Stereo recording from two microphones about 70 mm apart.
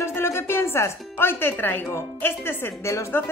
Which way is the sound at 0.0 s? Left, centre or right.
Left.